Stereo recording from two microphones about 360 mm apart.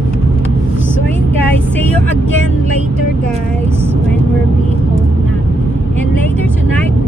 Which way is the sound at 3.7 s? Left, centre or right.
Centre.